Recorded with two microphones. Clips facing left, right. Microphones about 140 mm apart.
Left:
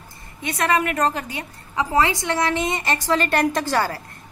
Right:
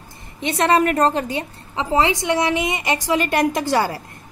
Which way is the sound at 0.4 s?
25° right (ahead or behind).